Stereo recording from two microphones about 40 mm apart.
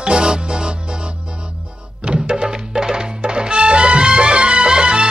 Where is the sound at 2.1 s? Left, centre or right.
Centre.